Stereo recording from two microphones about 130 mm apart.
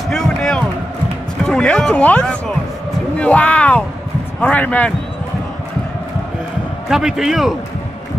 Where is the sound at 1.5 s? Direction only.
5° left (ahead or behind).